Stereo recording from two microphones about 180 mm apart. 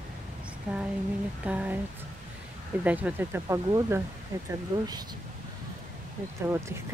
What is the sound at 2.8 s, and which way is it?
Speech, 10° right (ahead or behind).